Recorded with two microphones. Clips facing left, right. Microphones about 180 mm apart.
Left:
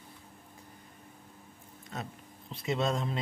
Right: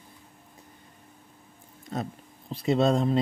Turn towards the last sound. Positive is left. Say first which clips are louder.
# right 8 dB
turn(degrees=-35)  # may be behind; listen again after turning